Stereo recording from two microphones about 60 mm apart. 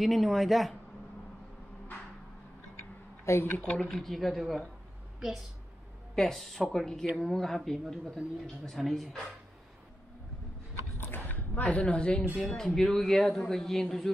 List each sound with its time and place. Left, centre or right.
0.0 s a man's voice: centre
3.3 s speech: left
3.7 s a man's voice: centre
6.1 s a man's voice: centre
11.2 s a sound: left
11.7 s a woman's voice: left; by 14.1 s centre